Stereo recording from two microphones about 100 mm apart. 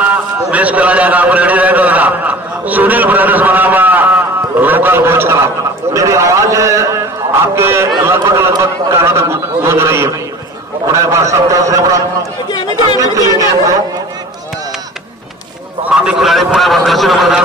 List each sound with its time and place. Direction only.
0.0 s a man's voice: 15° right (ahead or behind); by 12.0 s 35° right (ahead or behind)
13.0 s a man's voice: 35° right (ahead or behind)
15.8 s a man's voice: 10° right (ahead or behind)